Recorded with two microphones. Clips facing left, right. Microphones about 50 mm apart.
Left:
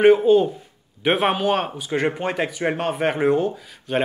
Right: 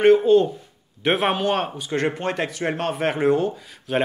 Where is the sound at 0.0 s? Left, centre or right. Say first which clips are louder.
Left 1 dB; centre.